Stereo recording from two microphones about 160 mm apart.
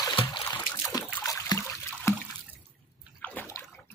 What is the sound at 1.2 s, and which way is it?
Trickle, 20° left (ahead or behind).